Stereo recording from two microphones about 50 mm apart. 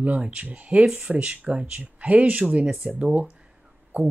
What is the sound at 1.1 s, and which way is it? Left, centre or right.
Speech, right.